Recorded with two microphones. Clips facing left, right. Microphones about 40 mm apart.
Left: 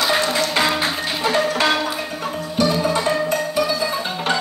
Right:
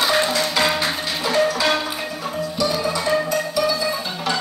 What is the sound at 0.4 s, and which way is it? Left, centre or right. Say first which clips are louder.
Music: left 1 dB; left.